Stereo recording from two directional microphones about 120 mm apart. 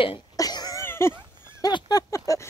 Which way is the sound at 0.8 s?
20° left (ahead or behind).